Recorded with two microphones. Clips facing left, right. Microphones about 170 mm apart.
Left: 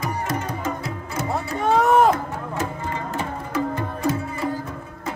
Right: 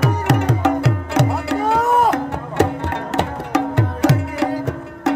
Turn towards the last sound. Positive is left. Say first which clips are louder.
# right 10 dB
turn(degrees=-80)